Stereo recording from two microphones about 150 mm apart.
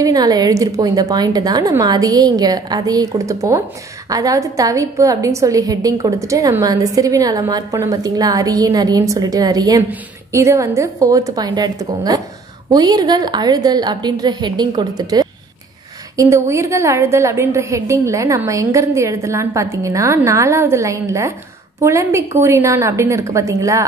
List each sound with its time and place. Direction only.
0.0 s a woman's voice: 25° right (ahead or behind)